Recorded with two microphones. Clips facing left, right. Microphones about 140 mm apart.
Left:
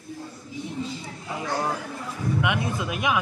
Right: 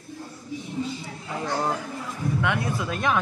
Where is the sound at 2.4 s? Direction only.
20° left (ahead or behind).